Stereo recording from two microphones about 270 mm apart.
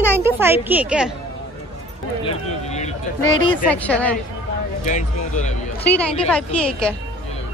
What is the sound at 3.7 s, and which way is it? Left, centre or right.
Speech, centre.